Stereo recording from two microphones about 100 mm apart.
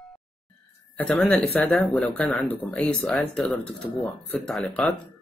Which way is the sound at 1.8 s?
15° left (ahead or behind).